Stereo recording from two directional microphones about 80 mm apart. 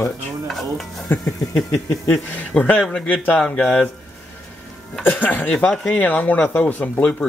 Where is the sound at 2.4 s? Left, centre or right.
Centre.